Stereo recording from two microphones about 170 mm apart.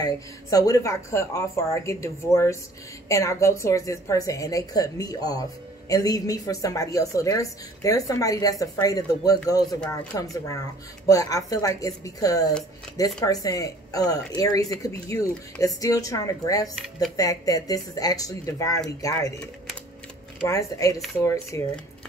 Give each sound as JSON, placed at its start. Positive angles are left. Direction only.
{"t": 0.0, "sound": "a woman's voice", "side_deg": 20}
{"t": 20.4, "sound": "a woman's voice", "side_deg": 20}